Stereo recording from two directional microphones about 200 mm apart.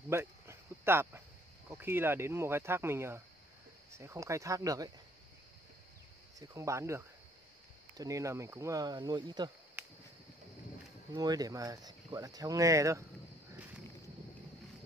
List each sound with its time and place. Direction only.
0.1 s a sound: 10° right (ahead or behind)
1.7 s speech: 10° right (ahead or behind)
6.4 s speech: 15° right (ahead or behind)
8.0 s speech: 15° right (ahead or behind)
11.1 s speech: 20° right (ahead or behind)